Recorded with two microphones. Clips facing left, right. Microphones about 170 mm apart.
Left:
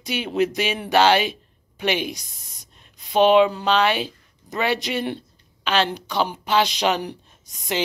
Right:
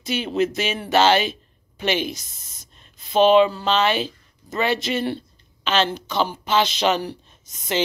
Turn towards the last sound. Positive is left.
turn(degrees=15)  # may be behind; listen again after turning